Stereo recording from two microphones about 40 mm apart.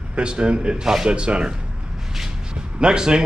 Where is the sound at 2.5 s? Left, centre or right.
Centre.